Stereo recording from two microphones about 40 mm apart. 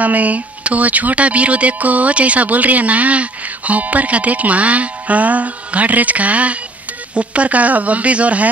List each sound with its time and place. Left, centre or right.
0.0 s speech: right